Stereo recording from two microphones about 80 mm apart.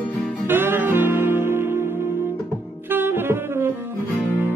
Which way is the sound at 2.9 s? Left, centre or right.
Right.